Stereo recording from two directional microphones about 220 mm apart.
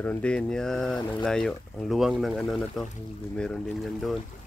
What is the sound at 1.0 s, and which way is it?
Speech, 20° left (ahead or behind).